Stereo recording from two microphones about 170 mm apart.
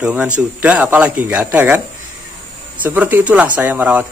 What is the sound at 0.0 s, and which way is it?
Speech, 10° right (ahead or behind).